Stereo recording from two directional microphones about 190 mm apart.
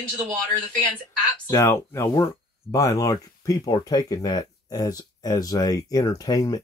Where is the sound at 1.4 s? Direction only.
15° left (ahead or behind).